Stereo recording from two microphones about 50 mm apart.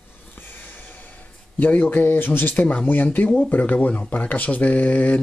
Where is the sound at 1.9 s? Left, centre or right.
Left.